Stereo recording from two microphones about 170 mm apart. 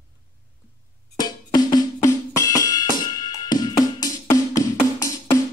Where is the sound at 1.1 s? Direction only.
25° left (ahead or behind).